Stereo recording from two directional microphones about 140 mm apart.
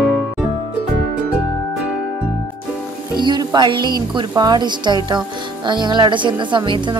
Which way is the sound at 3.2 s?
30° right (ahead or behind).